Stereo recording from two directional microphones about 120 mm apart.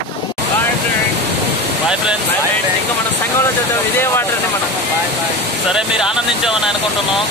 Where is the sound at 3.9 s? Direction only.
20° left (ahead or behind).